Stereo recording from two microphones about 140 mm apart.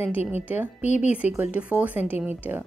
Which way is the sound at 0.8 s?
60° left (ahead or behind).